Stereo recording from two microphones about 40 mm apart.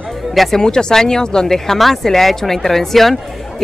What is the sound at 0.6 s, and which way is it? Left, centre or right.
Speech, centre.